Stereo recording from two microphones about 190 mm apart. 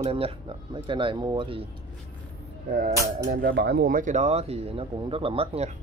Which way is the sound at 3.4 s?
65° right (ahead or behind).